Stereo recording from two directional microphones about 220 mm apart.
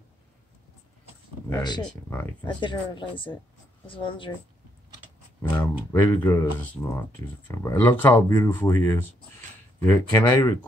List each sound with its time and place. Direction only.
1.5 s speech: 15° left (ahead or behind)
5.4 s speech: 10° left (ahead or behind)